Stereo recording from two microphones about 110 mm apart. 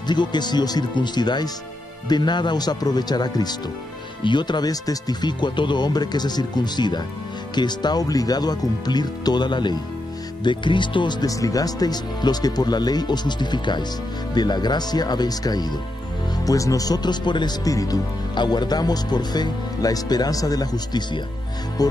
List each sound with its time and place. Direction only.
0.0 s speech: 40° left (ahead or behind)